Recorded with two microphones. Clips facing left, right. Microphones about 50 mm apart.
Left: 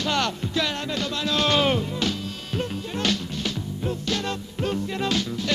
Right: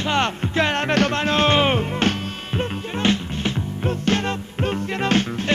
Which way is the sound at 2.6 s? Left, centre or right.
Right.